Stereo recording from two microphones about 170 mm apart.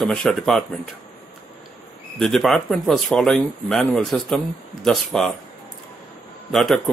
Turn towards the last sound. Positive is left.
turn(degrees=5)  # may be behind; listen again after turning